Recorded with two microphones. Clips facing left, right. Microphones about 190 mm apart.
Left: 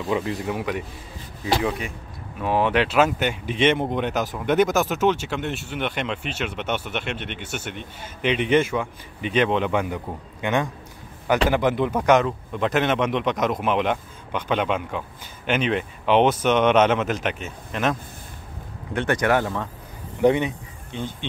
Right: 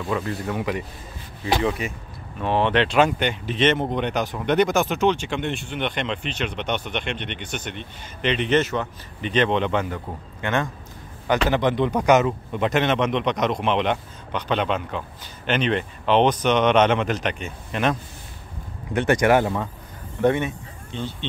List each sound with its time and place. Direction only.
0.1 s speech: 15° left (ahead or behind)
0.6 s a man's voice: 5° left (ahead or behind)
19.2 s speech: 10° right (ahead or behind)
20.2 s speech: 15° left (ahead or behind)